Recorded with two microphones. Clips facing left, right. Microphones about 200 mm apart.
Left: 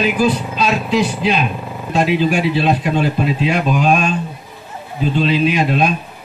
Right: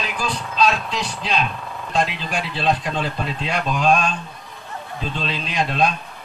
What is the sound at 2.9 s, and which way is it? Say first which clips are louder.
Speech: left 8 dB; 60° left (ahead or behind).